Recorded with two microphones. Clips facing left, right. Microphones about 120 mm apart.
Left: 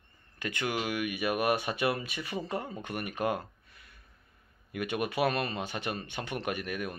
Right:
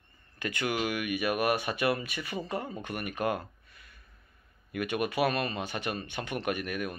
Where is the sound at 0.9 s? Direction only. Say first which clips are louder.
Right 1 dB; 25° left (ahead or behind).